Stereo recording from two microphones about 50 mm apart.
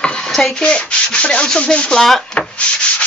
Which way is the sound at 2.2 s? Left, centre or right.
Left.